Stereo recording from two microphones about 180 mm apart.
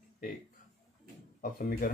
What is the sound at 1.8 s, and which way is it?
Speech, 50° left (ahead or behind).